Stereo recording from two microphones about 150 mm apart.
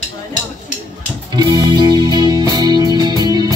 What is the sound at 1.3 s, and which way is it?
Music, 30° right (ahead or behind).